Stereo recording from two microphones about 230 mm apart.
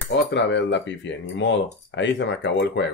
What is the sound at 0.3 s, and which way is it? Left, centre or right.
Speech, left.